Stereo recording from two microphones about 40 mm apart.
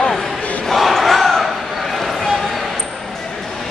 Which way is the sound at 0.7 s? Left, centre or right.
Centre.